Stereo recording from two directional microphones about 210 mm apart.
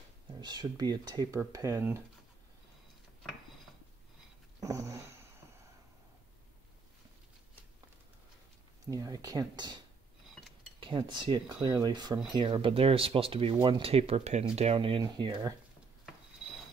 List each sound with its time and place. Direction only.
0.4 s speech: 20° right (ahead or behind)
4.6 s a sound: 15° right (ahead or behind)
8.9 s speech: 15° right (ahead or behind)
10.8 s speech: 20° right (ahead or behind)